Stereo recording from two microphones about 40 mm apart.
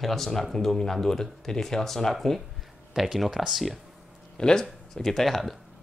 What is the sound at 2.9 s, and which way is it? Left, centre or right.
Speech, centre.